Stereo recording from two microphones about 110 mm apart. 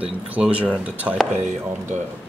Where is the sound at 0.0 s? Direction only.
10° right (ahead or behind).